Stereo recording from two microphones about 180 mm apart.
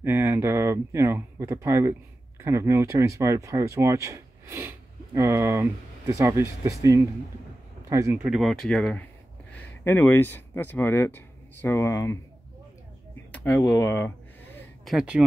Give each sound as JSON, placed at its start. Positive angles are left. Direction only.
{"t": 0.0, "sound": "speech", "side_deg": -10}
{"t": 8.4, "sound": "speech", "side_deg": 0}
{"t": 13.3, "sound": "a sound", "side_deg": 5}
{"t": 14.9, "sound": "speech", "side_deg": -5}